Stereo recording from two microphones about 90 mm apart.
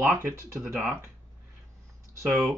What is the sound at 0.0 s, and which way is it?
Speech, 25° right (ahead or behind).